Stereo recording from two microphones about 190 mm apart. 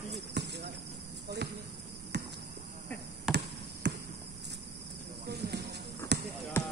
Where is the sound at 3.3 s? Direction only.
5° right (ahead or behind).